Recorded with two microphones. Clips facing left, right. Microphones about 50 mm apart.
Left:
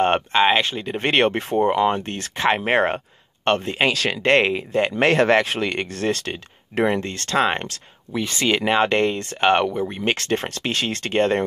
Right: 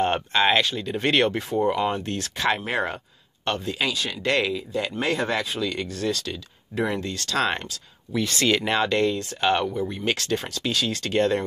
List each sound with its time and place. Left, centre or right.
0.3 s speech: left
2.6 s speech: left
3.9 s speech: left
4.2 s speech: left
4.9 s speech: left
7.3 s speech: left
8.8 s speech: left
9.8 s speech: left